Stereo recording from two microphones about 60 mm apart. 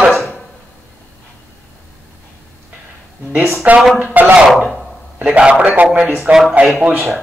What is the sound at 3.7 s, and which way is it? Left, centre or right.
A man's voice, right.